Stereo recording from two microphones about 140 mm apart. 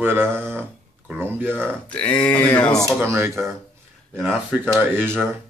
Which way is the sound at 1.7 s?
10° left (ahead or behind).